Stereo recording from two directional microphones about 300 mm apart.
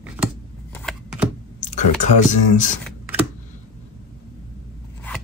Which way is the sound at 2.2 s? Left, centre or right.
Left.